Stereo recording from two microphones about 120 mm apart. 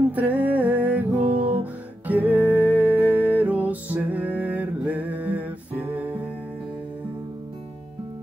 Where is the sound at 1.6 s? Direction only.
15° right (ahead or behind).